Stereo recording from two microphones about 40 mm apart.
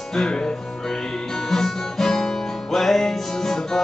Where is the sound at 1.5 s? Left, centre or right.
Centre.